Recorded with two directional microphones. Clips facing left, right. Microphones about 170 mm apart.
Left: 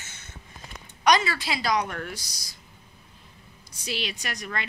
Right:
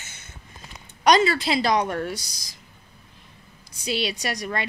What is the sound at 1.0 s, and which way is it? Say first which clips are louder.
Speech: right 4 dB; 30° right (ahead or behind).